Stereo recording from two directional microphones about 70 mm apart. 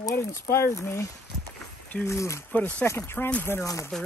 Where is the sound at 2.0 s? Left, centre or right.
Left.